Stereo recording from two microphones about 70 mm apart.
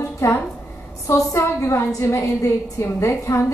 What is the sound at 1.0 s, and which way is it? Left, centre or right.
A woman's voice, left.